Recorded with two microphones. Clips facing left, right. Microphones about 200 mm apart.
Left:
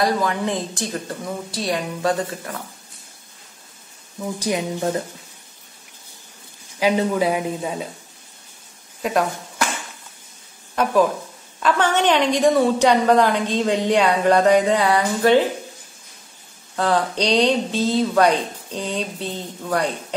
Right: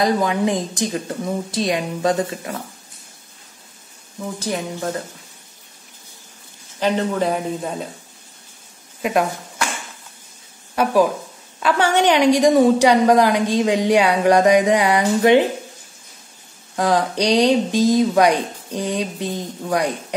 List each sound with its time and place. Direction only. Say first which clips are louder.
0.0 s a woman's voice: right 3 dB; 15° right (ahead or behind)
4.4 s speech: left 2 dB; 15° left (ahead or behind)
6.8 s speech: left 1 dB; 5° left (ahead or behind)
10.8 s a woman's voice: right 1 dB; 10° right (ahead or behind)
16.7 s a woman's voice: right 2 dB; 15° right (ahead or behind)